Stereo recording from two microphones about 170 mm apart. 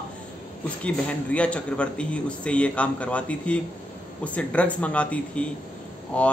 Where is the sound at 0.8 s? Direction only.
5° left (ahead or behind).